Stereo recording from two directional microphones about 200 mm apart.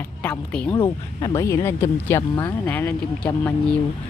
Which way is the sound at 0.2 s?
10° left (ahead or behind).